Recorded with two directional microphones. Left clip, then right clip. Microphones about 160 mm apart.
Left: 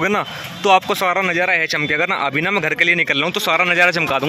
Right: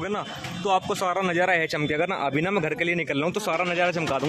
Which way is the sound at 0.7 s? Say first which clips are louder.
Left 9 dB; 20° left (ahead or behind).